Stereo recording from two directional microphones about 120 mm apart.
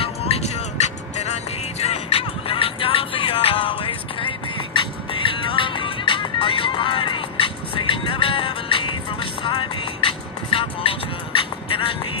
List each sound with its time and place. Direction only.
0.0 s music: 55° left (ahead or behind)